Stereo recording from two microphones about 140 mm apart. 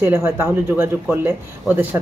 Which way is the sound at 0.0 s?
15° right (ahead or behind).